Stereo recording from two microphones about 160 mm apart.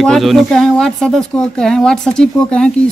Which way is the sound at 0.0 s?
Centre (ahead or behind).